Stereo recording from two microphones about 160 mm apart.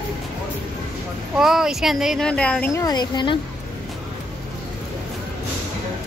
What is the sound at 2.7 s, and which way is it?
Speech, 25° left (ahead or behind).